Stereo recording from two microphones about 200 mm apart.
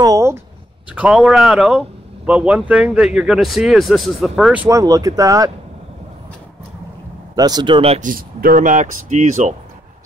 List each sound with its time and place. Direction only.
0.0 s speech: 15° right (ahead or behind)
0.9 s speech: 5° right (ahead or behind)
4.6 s speech: 15° right (ahead or behind)
7.3 s speech: 20° right (ahead or behind)
8.1 s speech: 45° right (ahead or behind)